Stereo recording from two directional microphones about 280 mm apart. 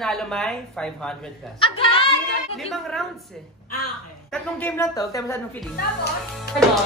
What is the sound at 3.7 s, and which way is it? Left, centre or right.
Speech, left.